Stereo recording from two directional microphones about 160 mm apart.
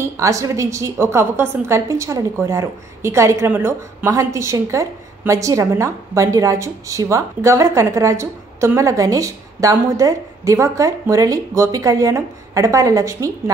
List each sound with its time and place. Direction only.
0.0 s a woman's voice: 20° right (ahead or behind)